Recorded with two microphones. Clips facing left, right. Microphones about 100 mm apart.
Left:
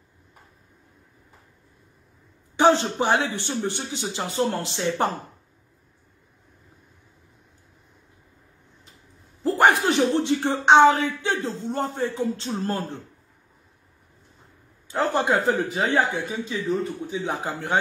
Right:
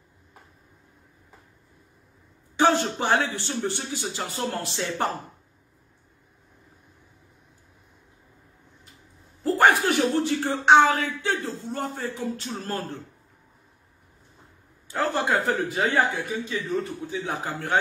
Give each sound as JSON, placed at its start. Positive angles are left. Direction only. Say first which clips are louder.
{"t": 2.5, "sound": "a man's voice", "louder": "left 3 dB", "side_deg": 20}
{"t": 9.4, "sound": "a man's voice", "louder": "left 1 dB", "side_deg": 20}
{"t": 14.9, "sound": "a man's voice", "louder": "left 2 dB", "side_deg": 20}